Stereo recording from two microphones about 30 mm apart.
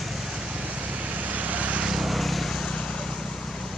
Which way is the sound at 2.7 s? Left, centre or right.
Left.